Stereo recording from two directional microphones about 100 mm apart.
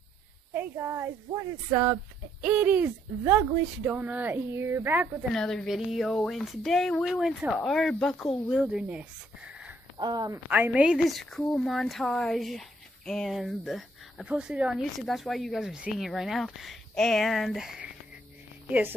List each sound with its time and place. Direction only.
0.5 s speech: 25° right (ahead or behind)
2.4 s speech: 15° right (ahead or behind)
5.3 s speech: 5° left (ahead or behind); by 9.8 s 10° right (ahead or behind)
9.9 s speech: 45° right (ahead or behind)
10.5 s speech: 15° right (ahead or behind)
11.1 s speech: centre (ahead or behind)
14.2 s speech: 10° right (ahead or behind)
14.8 s speech: centre (ahead or behind)
18.7 s speech: 20° right (ahead or behind)